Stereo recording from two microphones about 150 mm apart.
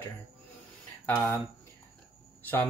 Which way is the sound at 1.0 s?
15° left (ahead or behind).